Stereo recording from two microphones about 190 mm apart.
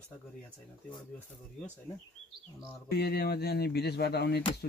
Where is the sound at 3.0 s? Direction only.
55° left (ahead or behind).